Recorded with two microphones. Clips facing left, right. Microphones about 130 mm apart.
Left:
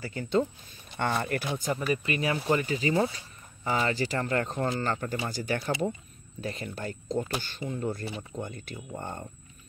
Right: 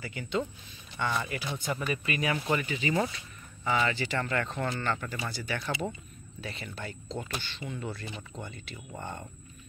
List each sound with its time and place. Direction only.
0.0 s speech: 40° left (ahead or behind)
0.9 s speech: 50° left (ahead or behind)
1.6 s speech: 35° left (ahead or behind)